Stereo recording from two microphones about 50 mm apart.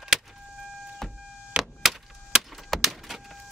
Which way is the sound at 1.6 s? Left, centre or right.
Centre.